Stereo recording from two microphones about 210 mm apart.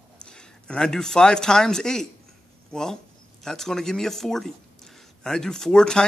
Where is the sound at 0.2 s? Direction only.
5° left (ahead or behind).